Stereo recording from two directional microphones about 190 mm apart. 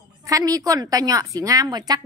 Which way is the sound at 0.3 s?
20° right (ahead or behind).